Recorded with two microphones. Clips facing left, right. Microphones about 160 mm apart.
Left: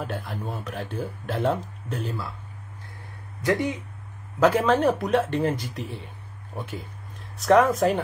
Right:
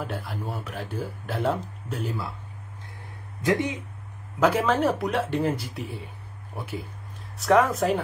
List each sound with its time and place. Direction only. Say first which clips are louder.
0.0 s speech: left 1 dB; 5° right (ahead or behind)
3.4 s speech: even; 20° right (ahead or behind)
4.4 s speech: left 2 dB; 5° right (ahead or behind)